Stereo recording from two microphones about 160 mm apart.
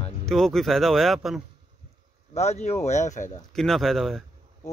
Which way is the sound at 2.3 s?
45° left (ahead or behind).